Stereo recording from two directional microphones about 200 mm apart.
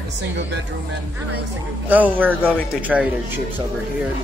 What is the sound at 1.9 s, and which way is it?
A woman's voice, 10° right (ahead or behind).